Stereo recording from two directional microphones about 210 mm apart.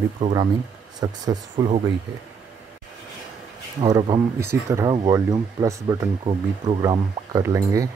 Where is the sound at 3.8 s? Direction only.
25° right (ahead or behind).